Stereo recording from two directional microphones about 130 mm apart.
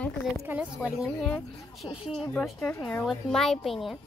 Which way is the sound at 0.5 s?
15° right (ahead or behind).